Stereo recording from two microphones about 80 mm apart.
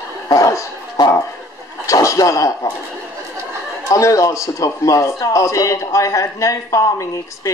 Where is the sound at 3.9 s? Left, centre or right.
Left.